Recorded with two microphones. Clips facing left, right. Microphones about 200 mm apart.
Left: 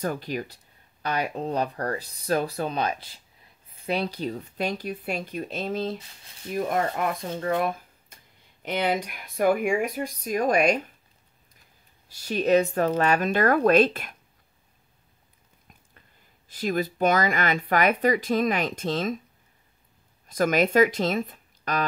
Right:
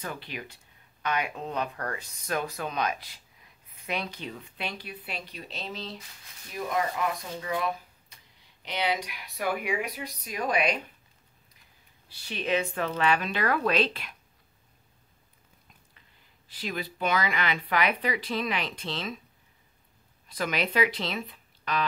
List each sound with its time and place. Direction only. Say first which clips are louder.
0.0 s speech: left 9 dB; 40° left (ahead or behind)
12.1 s speech: left 8 dB; 45° left (ahead or behind)
16.4 s speech: left 9 dB; 45° left (ahead or behind)
20.2 s speech: left 8 dB; 45° left (ahead or behind)